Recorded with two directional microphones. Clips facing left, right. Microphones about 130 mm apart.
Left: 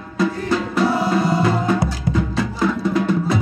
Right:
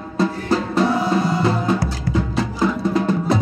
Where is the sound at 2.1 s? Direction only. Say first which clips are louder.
Even; 20° left (ahead or behind).